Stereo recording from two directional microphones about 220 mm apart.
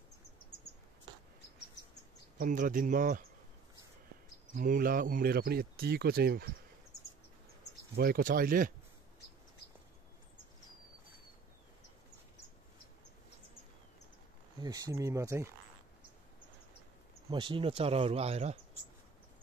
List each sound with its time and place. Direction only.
2.3 s speech: 40° right (ahead or behind)
4.6 s speech: 40° right (ahead or behind)
7.9 s speech: 45° right (ahead or behind)
14.6 s speech: 15° right (ahead or behind)
17.3 s speech: 20° right (ahead or behind)